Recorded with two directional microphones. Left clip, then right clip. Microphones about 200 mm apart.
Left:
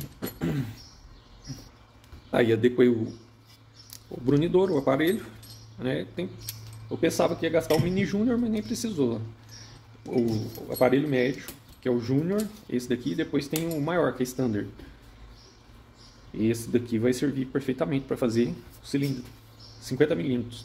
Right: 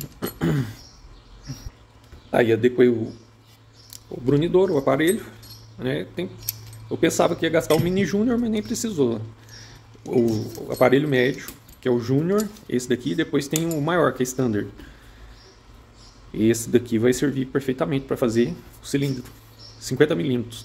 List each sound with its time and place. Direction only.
0.2 s a sound: 25° right (ahead or behind)
2.3 s speech: 5° right (ahead or behind)
4.3 s speech: 5° right (ahead or behind)
16.3 s speech: 25° right (ahead or behind)